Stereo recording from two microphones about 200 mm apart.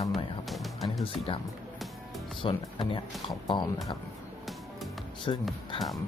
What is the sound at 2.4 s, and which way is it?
Speech, 25° left (ahead or behind).